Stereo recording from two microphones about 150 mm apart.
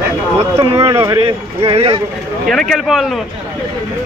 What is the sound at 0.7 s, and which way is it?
Speech, 20° right (ahead or behind).